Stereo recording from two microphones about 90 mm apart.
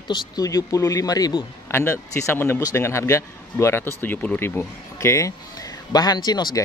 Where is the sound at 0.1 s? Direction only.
45° left (ahead or behind).